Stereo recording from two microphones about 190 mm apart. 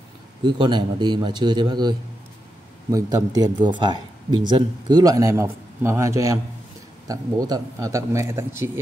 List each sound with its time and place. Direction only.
0.4 s a man's voice: 25° right (ahead or behind)